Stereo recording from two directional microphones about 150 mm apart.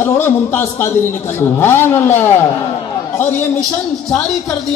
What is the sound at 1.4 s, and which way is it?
A man's voice, 15° left (ahead or behind).